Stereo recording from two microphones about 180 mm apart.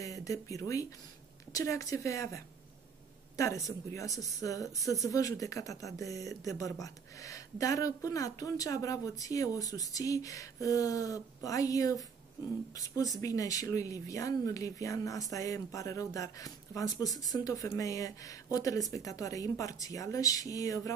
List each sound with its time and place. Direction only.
0.0 s a woman's voice: 20° left (ahead or behind)